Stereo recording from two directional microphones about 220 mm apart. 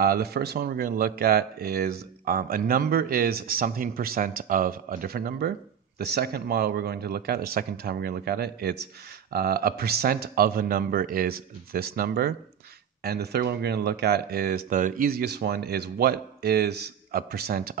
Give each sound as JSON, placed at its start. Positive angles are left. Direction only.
{"t": 0.0, "sound": "speech", "side_deg": -45}